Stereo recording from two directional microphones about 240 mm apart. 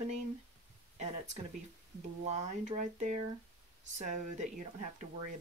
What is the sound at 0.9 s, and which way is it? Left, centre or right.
Speech, right.